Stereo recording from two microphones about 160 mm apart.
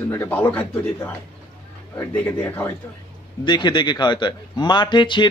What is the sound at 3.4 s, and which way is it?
Speech, 30° left (ahead or behind).